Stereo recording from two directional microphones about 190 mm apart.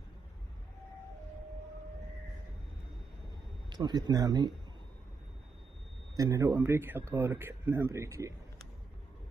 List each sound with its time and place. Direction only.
3.7 s speech: 20° right (ahead or behind)
6.1 s a man's voice: 15° right (ahead or behind)